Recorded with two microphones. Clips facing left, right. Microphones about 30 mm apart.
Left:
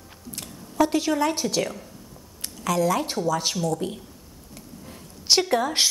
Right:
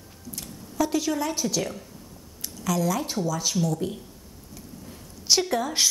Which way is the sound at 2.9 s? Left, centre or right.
Left.